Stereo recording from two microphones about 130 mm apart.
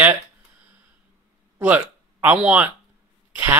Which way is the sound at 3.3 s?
15° right (ahead or behind).